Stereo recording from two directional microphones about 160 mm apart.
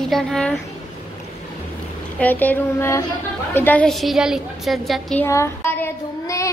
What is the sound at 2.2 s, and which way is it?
Child singing, 10° left (ahead or behind).